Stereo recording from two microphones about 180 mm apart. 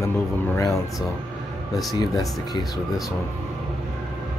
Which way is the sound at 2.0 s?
20° left (ahead or behind).